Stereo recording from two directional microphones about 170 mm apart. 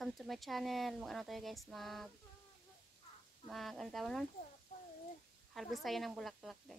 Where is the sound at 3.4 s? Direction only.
Centre (ahead or behind).